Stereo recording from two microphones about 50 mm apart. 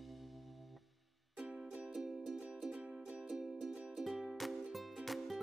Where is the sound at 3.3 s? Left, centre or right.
Centre.